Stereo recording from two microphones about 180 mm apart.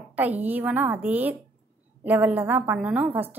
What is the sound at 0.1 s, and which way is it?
A woman's voice, 10° right (ahead or behind).